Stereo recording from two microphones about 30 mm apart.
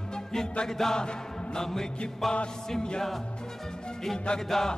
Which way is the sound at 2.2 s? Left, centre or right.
Centre.